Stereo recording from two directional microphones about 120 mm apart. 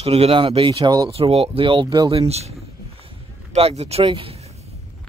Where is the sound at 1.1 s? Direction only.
55° right (ahead or behind).